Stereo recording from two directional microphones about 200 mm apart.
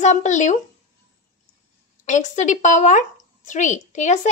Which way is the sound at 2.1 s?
35° left (ahead or behind).